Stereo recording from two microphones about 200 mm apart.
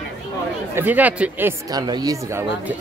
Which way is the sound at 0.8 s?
10° right (ahead or behind).